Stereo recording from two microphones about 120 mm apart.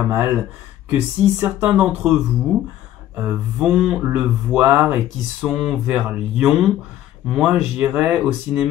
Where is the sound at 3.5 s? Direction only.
5° right (ahead or behind).